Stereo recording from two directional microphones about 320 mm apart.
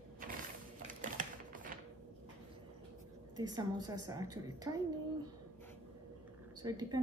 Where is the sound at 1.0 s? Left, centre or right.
Right.